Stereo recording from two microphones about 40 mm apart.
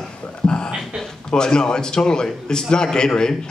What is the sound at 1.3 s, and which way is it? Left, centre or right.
Speech, centre.